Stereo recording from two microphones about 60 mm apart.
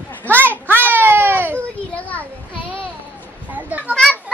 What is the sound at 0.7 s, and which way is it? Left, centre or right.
Baby cry, right.